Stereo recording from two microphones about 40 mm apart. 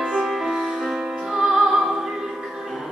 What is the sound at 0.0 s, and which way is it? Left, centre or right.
Music, centre.